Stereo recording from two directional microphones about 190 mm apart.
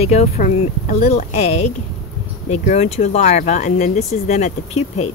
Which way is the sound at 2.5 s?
35° left (ahead or behind).